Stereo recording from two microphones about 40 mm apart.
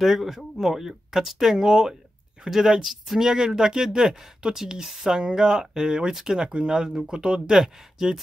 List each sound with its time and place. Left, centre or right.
0.0 s speech: centre